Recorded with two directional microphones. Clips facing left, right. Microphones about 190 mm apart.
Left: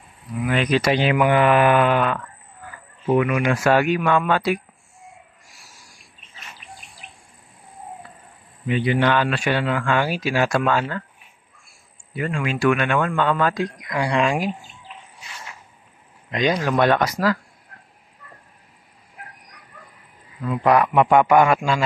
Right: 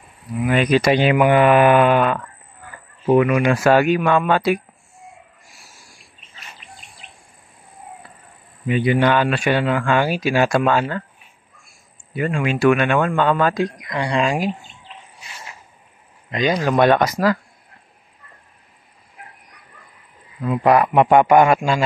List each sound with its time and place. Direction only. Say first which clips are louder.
0.3 s speech: right 4 dB; 10° right (ahead or behind)
3.1 s speech: right 4 dB; 30° right (ahead or behind)
8.6 s a man's voice: right 3 dB; 10° right (ahead or behind); by 11.1 s 25° right (ahead or behind)
12.2 s a man's voice: right 4 dB; 25° right (ahead or behind)
13.7 s speech: even; 5° left (ahead or behind)
16.3 s speech: right 2 dB; 5° right (ahead or behind)
20.4 s speech: right 2 dB; 15° right (ahead or behind)
20.8 s a man's voice: right 2 dB; 30° right (ahead or behind)